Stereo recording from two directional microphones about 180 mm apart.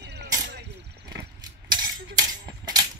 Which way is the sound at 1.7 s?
25° right (ahead or behind).